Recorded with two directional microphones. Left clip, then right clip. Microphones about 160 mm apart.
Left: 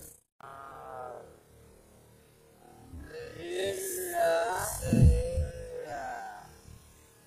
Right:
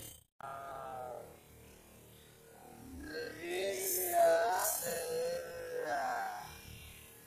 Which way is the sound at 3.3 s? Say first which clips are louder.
Left 5 dB; 25° right (ahead or behind).